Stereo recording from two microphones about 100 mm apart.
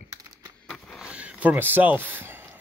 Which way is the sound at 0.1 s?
40° right (ahead or behind).